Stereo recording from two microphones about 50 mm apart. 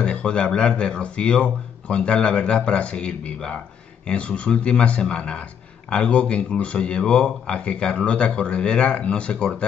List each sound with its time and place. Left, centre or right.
0.0 s speech: centre